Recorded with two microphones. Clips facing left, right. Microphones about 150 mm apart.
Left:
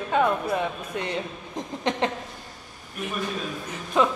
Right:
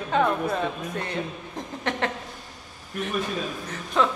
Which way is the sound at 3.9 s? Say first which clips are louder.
Left 1 dB; 15° left (ahead or behind).